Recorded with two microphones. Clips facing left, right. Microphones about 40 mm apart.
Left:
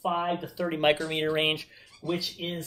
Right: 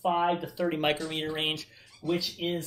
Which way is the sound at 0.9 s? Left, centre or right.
Centre.